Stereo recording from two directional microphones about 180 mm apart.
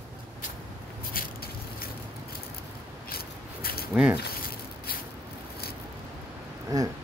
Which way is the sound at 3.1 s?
55° left (ahead or behind).